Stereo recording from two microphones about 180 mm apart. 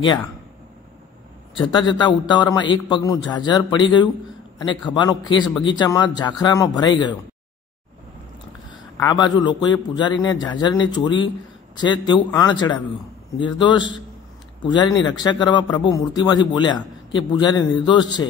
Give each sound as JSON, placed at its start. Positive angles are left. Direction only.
{"t": 1.5, "sound": "a man's voice", "side_deg": 25}
{"t": 9.0, "sound": "a man's voice", "side_deg": 25}